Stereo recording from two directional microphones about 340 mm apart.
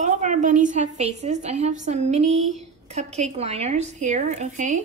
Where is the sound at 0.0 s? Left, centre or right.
Right.